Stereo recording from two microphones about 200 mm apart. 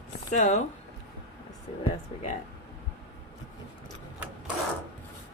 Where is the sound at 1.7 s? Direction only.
30° left (ahead or behind).